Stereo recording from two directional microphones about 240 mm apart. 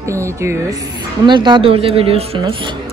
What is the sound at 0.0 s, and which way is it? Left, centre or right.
A woman's voice, centre.